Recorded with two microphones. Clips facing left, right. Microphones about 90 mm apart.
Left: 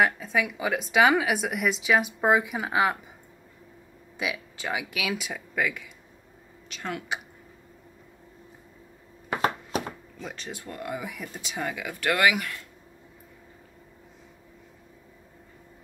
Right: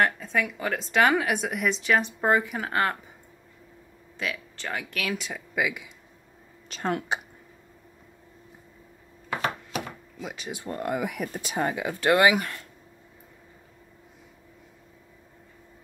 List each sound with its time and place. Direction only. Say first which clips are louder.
0.0 s speech: left 1 dB; centre (ahead or behind)
4.2 s speech: left 1 dB; 10° left (ahead or behind); by 5.9 s 10° right (ahead or behind)
6.7 s speech: right 5 dB; 40° right (ahead or behind)
9.4 s a sound: left 4 dB; 35° left (ahead or behind)
10.1 s speech: right 6 dB; 10° right (ahead or behind)
10.7 s speech: right 5 dB; 40° right (ahead or behind)
11.0 s speech: right 6 dB; 60° right (ahead or behind)
11.5 s speech: right 4 dB; 35° right (ahead or behind)